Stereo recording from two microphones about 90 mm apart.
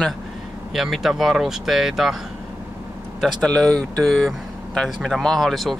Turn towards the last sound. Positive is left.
turn(degrees=0)  # may be behind; listen again after turning